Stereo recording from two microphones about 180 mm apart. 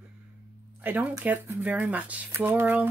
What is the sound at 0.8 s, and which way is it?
Speech, 10° right (ahead or behind).